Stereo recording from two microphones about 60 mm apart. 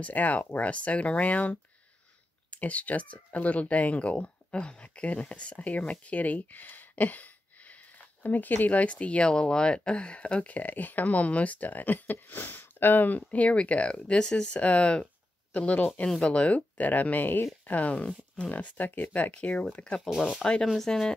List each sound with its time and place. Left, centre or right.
0.0 s speech: left
20.1 s speech: centre